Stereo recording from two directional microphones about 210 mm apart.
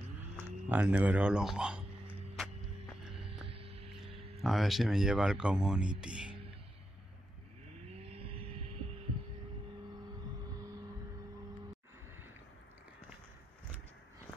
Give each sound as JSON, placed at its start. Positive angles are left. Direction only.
{"t": 0.2, "sound": "a sound", "side_deg": -10}
{"t": 3.4, "sound": "music", "side_deg": -25}
{"t": 4.4, "sound": "speech", "side_deg": 0}
{"t": 8.1, "sound": "vehicle", "side_deg": -25}